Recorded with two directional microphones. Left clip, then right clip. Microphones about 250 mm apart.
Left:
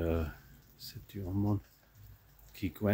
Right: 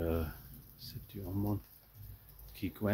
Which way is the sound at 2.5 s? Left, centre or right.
Left.